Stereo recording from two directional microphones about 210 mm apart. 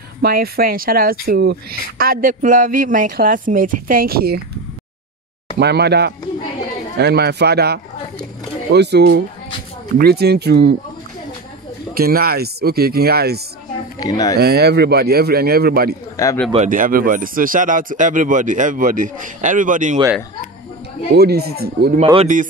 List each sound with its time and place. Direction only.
0.2 s speech: 45° right (ahead or behind)
5.6 s speech: 50° right (ahead or behind)
11.9 s speech: 45° right (ahead or behind)
13.9 s speech: 15° left (ahead or behind)
14.4 s speech: 50° right (ahead or behind)
16.2 s speech: 15° left (ahead or behind)
16.5 s speech: 40° right (ahead or behind)
21.1 s speech: 50° right (ahead or behind)
22.0 s speech: 25° right (ahead or behind)